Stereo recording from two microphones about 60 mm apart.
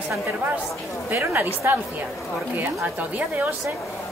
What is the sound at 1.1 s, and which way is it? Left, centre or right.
Speech, right.